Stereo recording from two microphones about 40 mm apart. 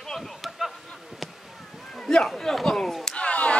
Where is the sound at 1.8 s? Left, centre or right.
Centre.